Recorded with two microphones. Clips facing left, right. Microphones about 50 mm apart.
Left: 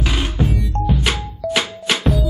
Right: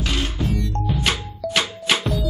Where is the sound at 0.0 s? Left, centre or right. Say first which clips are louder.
Left 2 dB; centre.